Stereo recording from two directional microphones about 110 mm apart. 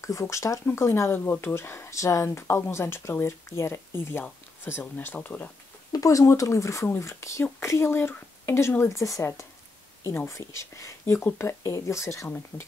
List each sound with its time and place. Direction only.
0.0 s speech: 30° left (ahead or behind)
5.9 s speech: 30° left (ahead or behind)